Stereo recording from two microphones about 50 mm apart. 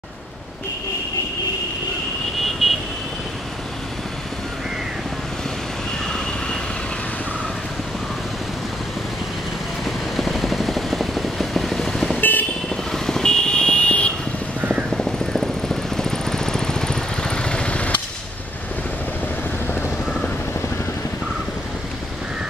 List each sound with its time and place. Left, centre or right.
2.6 s vehicle: centre
6.0 s vehicle: centre
9.8 s vehicle: centre
12.2 s vehicle: left
12.6 s vehicle: centre
14.9 s helicopter: centre; by 18.0 s left